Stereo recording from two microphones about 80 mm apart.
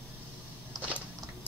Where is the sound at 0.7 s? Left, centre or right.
Right.